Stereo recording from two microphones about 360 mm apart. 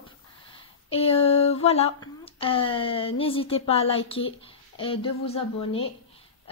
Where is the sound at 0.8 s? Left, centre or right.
Centre.